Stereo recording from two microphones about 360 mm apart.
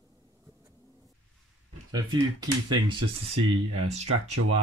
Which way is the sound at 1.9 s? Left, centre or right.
Centre.